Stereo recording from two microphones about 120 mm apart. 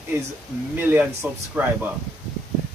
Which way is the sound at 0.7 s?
15° right (ahead or behind).